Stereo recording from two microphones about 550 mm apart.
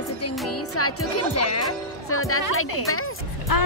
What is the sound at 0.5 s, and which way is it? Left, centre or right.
Speech, left.